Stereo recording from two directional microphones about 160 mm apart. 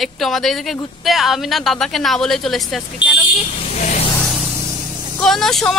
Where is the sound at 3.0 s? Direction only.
30° left (ahead or behind).